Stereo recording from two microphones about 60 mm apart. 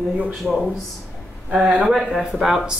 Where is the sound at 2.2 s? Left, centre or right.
Centre.